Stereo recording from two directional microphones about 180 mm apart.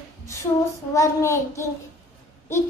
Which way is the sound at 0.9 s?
15° left (ahead or behind).